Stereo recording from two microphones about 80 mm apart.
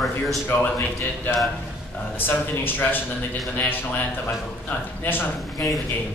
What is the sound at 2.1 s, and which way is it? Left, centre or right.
A man's voice, left.